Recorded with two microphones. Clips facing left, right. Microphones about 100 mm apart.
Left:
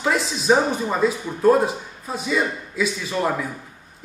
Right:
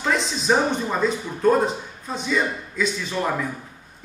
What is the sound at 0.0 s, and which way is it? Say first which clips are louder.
A man's voice: left 1 dB; 5° left (ahead or behind).